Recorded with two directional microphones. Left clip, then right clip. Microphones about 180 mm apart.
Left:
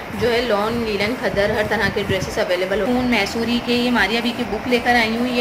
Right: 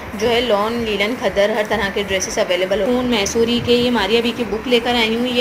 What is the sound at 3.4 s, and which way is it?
Speech, centre (ahead or behind).